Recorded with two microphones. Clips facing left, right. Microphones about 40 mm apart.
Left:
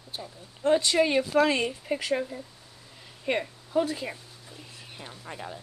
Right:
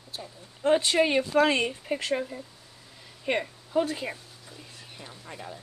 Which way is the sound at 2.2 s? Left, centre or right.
Centre.